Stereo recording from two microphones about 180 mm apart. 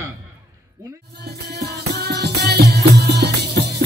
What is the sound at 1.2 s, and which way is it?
Music, 65° right (ahead or behind).